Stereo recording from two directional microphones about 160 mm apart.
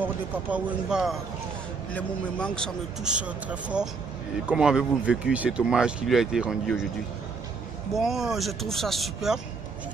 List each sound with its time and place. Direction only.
0.0 s speech: 10° right (ahead or behind)
2.0 s speech: 5° left (ahead or behind)
3.1 s speech: 10° right (ahead or behind)
7.9 s speech: centre (ahead or behind)